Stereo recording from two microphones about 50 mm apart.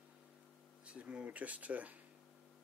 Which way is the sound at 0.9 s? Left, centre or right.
Right.